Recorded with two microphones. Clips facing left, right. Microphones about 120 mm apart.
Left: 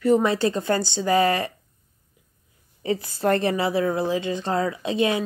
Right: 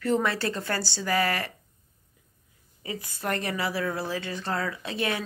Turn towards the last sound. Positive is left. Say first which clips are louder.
# left 7 dB
turn(degrees=20)  # may be behind; listen again after turning